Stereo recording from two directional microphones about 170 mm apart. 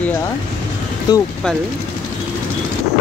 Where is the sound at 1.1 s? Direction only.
20° left (ahead or behind).